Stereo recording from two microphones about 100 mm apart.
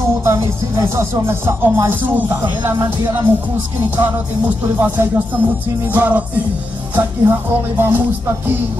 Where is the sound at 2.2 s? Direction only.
45° right (ahead or behind).